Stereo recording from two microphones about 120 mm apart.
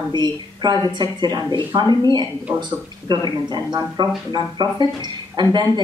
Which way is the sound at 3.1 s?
35° right (ahead or behind).